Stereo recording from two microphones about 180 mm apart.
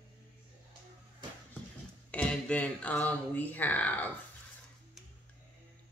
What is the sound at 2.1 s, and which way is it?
A man's voice, 5° left (ahead or behind).